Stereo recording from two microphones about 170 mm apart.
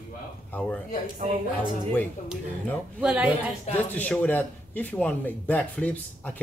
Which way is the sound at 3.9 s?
10° left (ahead or behind).